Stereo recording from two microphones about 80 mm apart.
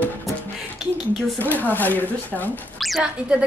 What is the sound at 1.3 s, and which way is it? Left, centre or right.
Speech, left.